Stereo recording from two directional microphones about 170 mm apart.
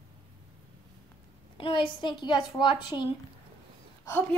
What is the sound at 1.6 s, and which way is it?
A woman's voice, 30° left (ahead or behind).